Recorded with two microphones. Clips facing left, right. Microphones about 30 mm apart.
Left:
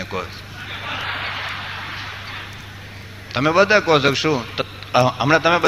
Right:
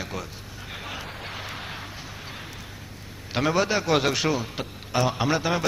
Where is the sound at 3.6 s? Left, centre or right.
Left.